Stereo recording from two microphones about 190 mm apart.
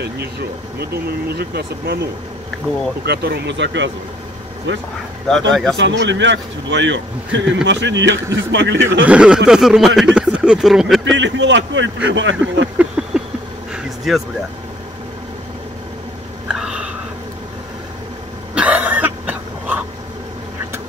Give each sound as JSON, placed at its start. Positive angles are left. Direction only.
{"t": 0.7, "sound": "speech", "side_deg": -55}
{"t": 3.1, "sound": "a man's voice", "side_deg": -60}
{"t": 5.5, "sound": "speech", "side_deg": 0}
{"t": 5.8, "sound": "a man's voice", "side_deg": -70}
{"t": 9.0, "sound": "speech", "side_deg": -5}
{"t": 11.1, "sound": "a man's voice", "side_deg": -70}
{"t": 12.7, "sound": "a sound", "side_deg": -5}
{"t": 14.1, "sound": "speech", "side_deg": 0}
{"t": 16.4, "sound": "a sound", "side_deg": -5}
{"t": 18.5, "sound": "cough", "side_deg": -5}